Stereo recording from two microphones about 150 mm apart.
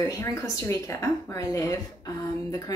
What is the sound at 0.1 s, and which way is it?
Speech, 20° left (ahead or behind).